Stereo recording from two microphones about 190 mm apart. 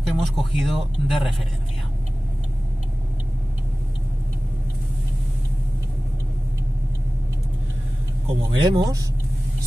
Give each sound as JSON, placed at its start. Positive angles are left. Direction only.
{"t": 0.0, "sound": "speech", "side_deg": 0}
{"t": 8.3, "sound": "speech", "side_deg": -25}